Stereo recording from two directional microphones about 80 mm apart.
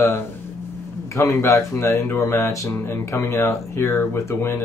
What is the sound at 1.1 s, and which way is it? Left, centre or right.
Speech, left.